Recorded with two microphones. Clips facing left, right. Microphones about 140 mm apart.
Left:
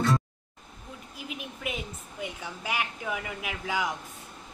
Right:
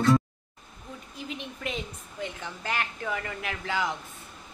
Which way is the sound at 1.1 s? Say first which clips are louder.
Right 2 dB; 5° left (ahead or behind).